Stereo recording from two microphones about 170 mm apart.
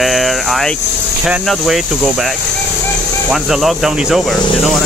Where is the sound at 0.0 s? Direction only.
Centre (ahead or behind).